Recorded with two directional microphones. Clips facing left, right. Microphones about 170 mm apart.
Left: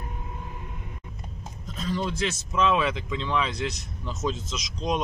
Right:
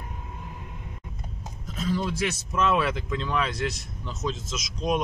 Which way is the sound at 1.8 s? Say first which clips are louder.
Right 1 dB; 5° right (ahead or behind).